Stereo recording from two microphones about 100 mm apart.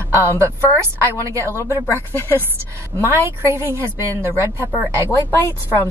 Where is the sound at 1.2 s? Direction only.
30° right (ahead or behind).